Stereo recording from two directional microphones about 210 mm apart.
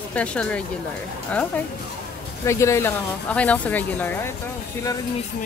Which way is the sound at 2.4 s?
15° left (ahead or behind).